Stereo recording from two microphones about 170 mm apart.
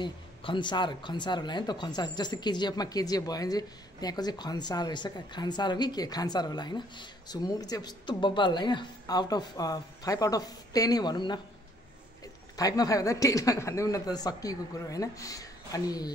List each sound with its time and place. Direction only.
0.0 s speech: 30° left (ahead or behind)
12.5 s speech: 20° left (ahead or behind)